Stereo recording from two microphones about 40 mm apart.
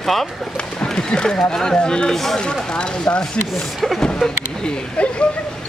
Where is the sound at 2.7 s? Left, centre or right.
Left.